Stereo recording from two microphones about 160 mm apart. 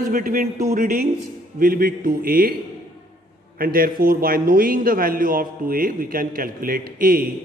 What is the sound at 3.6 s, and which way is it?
A man's voice, 65° right (ahead or behind).